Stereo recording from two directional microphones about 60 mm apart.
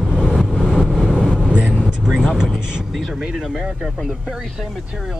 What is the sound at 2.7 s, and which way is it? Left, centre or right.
Speech, centre.